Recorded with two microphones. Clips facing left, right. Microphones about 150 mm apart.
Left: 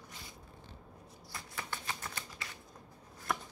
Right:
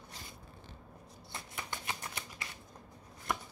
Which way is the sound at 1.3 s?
20° right (ahead or behind).